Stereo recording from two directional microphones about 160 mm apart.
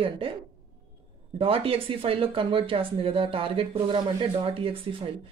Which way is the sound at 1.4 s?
35° right (ahead or behind).